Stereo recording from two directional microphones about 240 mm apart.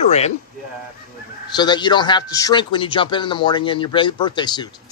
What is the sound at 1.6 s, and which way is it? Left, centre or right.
Speech, centre.